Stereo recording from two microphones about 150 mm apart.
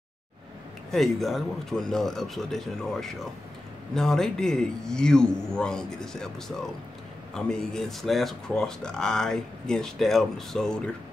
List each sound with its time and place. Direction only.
0.9 s speech: centre (ahead or behind)